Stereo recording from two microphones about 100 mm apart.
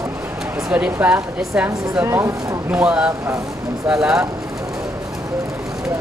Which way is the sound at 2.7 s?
10° right (ahead or behind).